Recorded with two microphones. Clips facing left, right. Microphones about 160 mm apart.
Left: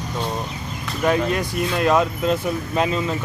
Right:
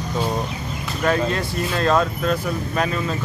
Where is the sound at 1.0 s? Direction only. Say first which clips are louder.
Left 1 dB; 15° left (ahead or behind).